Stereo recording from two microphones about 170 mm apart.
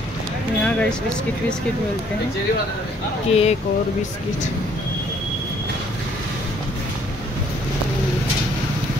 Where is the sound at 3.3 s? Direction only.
35° left (ahead or behind).